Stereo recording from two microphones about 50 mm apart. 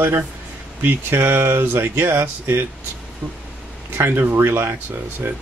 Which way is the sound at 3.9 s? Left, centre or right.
Right.